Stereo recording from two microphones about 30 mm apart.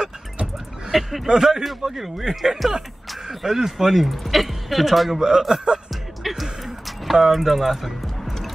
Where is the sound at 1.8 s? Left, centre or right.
Centre.